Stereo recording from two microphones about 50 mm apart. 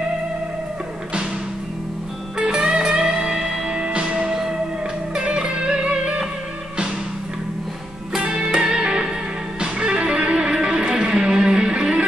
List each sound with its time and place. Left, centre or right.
2.3 s music: centre
8.2 s music: centre